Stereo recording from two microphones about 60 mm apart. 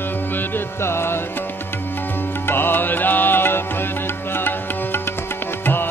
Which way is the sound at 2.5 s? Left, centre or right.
Left.